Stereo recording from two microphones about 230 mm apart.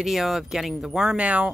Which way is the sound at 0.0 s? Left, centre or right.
Centre.